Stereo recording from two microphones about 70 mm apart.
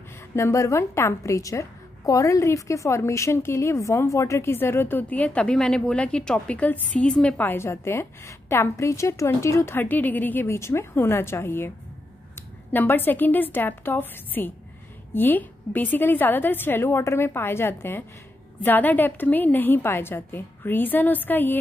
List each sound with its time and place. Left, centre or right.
0.4 s a woman's voice: left; by 7.4 s centre
7.4 s a woman's voice: left
9.8 s a woman's voice: left
10.4 s a woman's voice: left
12.7 s a woman's voice: left